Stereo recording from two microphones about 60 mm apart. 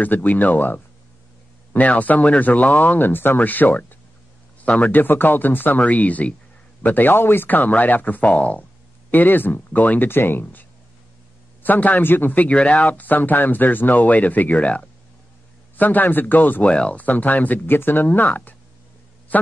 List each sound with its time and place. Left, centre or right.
0.0 s speech: left
16.6 s speech: centre